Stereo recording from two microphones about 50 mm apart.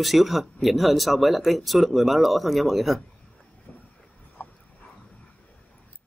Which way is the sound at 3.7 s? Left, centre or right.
Centre.